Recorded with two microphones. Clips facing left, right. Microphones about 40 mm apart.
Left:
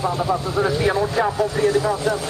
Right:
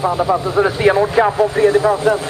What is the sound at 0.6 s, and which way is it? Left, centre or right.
Speech, right.